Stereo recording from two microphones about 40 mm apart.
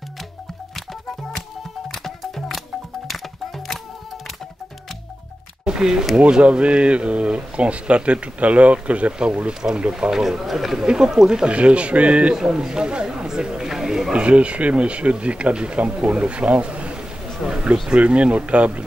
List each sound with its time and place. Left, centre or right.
1.9 s music: centre
5.7 s speech: centre
9.3 s speech: centre
10.2 s speech: centre
11.2 s speech: right
12.4 s speech: centre
14.1 s speech: right
17.4 s a sound: centre
17.8 s speech: right